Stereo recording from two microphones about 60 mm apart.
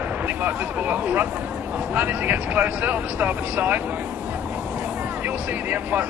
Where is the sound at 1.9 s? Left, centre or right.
Right.